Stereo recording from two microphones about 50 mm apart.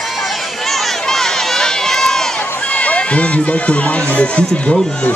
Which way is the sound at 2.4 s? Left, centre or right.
Left.